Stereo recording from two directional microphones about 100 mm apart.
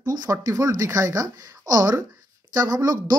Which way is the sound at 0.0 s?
35° right (ahead or behind).